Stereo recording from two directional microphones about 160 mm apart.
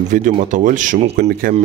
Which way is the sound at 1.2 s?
65° right (ahead or behind).